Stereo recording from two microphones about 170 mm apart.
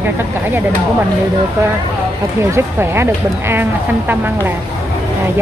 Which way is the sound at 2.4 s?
15° right (ahead or behind).